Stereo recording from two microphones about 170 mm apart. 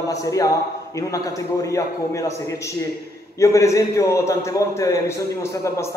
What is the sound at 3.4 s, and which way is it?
Speech, 15° left (ahead or behind).